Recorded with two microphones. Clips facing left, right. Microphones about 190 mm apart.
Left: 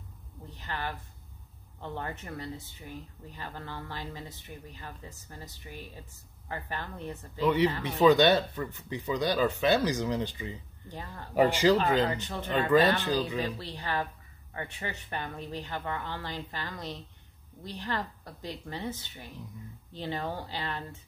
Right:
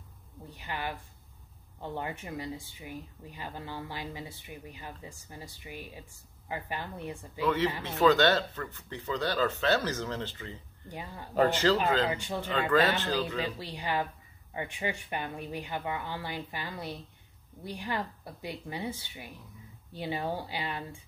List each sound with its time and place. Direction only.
0.5 s a sound: 10° right (ahead or behind)
1.8 s speech: 15° right (ahead or behind)
7.4 s speech: 15° left (ahead or behind)
10.9 s speech: 10° right (ahead or behind)
11.3 s speech: 10° left (ahead or behind)
12.1 s speech: 10° right (ahead or behind)
12.7 s speech: 15° left (ahead or behind)
13.4 s speech: 15° right (ahead or behind)